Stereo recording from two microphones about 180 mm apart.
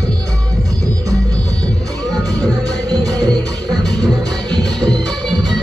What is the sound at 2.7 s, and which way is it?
Music, 20° right (ahead or behind).